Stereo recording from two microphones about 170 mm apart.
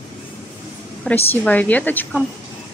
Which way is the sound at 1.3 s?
10° left (ahead or behind).